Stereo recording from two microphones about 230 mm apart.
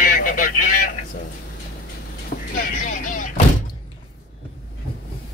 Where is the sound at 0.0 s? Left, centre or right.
Left.